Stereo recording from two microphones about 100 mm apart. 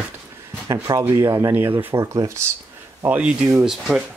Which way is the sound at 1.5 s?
20° right (ahead or behind).